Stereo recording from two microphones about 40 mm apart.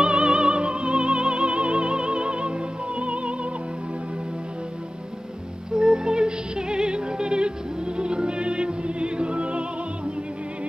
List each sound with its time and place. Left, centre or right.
0.0 s music: right
5.7 s music: right